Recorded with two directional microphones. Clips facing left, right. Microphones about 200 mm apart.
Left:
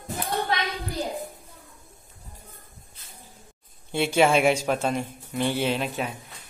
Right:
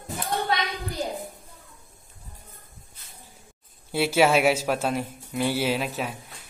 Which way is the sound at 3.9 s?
5° right (ahead or behind).